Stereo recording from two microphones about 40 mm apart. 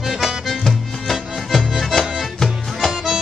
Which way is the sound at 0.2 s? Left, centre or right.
Centre.